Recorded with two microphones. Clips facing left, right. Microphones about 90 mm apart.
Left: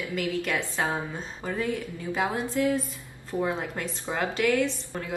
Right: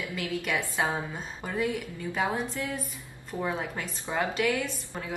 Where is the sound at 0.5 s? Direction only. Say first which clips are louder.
Left 1 dB; 10° right (ahead or behind).